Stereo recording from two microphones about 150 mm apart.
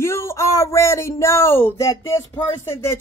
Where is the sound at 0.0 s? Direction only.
20° left (ahead or behind).